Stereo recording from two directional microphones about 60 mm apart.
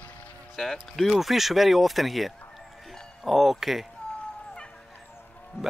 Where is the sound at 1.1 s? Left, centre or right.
Centre.